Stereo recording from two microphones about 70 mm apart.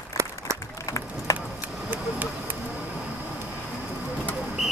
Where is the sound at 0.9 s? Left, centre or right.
Left.